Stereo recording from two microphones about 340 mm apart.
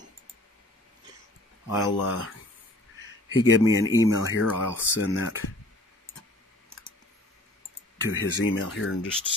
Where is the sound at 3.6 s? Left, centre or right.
Centre.